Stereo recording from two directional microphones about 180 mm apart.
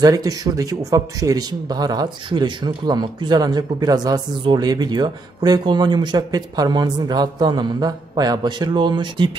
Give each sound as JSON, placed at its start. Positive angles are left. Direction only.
{"t": 0.0, "sound": "speech", "side_deg": -20}